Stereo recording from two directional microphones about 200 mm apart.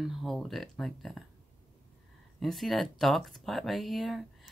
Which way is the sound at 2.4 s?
Centre (ahead or behind).